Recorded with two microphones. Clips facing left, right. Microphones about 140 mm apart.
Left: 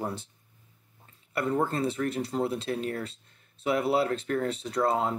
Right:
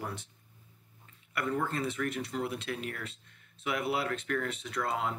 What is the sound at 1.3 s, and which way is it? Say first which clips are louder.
Speech: left 5 dB; 30° left (ahead or behind).